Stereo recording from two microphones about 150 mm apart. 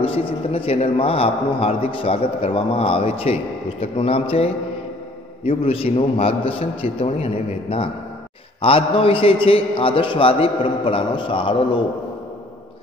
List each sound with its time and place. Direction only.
0.0 s a man's voice: 40° left (ahead or behind)
5.6 s a man's voice: 40° left (ahead or behind)